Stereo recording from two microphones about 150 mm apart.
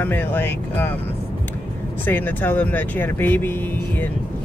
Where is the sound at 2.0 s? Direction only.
10° left (ahead or behind).